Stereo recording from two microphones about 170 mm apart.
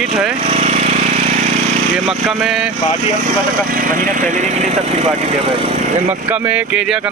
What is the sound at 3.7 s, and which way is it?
Speech, 55° right (ahead or behind).